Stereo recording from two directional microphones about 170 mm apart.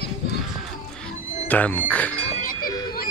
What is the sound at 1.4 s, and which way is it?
Speech, 10° left (ahead or behind).